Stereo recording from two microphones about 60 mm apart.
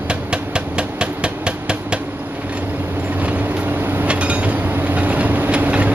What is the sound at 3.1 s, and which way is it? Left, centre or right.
Vehicle, right.